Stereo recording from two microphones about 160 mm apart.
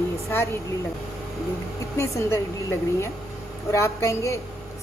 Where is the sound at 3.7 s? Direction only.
20° left (ahead or behind).